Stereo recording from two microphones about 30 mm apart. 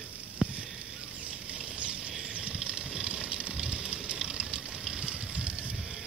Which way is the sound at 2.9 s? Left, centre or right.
Right.